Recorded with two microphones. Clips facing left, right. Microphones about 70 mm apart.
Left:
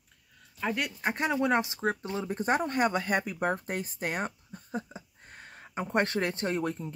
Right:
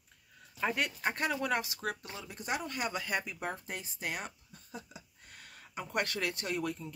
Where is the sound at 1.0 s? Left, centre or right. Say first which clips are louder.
Left 5 dB; centre.